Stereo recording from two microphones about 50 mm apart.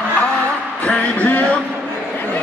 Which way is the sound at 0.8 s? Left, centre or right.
Left.